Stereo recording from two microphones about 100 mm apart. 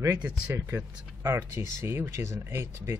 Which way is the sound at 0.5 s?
30° right (ahead or behind).